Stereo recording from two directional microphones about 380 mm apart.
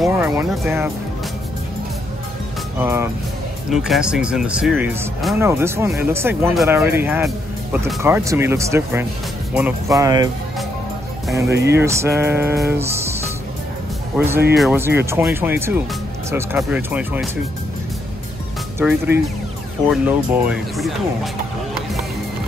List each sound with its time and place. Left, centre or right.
0.0 s speech: centre
2.8 s music: centre
3.7 s speech: centre
9.5 s music: centre
11.2 s speech: centre
11.5 s speech: right
11.8 s music: centre
14.1 s speech: centre
19.9 s speech: centre